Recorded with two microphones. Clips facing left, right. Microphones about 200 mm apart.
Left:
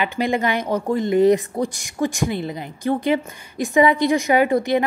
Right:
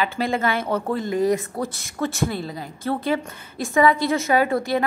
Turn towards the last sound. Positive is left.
turn(degrees=20)  # may be behind; listen again after turning